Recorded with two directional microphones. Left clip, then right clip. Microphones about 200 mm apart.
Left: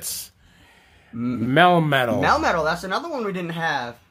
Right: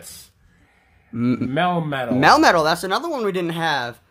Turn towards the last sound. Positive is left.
turn(degrees=-50)  # may be behind; listen again after turning